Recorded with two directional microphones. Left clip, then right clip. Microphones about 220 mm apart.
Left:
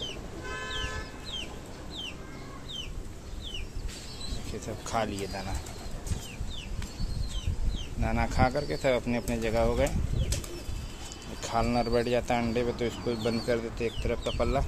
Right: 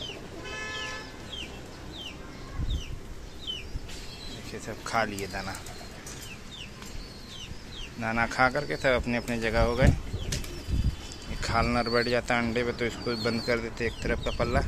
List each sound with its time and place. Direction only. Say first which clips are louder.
4.5 s speech: right 2 dB; 5° left (ahead or behind)
8.0 s speech: right 3 dB; 5° left (ahead or behind)
11.4 s speech: right 2 dB; centre (ahead or behind)